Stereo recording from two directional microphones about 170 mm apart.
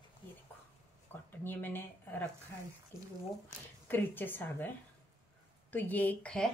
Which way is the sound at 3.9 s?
10° left (ahead or behind).